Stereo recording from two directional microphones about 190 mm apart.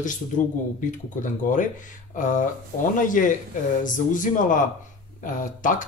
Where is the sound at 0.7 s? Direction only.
45° left (ahead or behind).